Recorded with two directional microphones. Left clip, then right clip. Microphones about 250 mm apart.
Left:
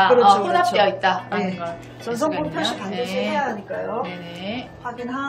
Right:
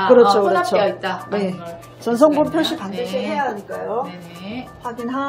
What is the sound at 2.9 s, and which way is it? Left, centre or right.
Speech, centre.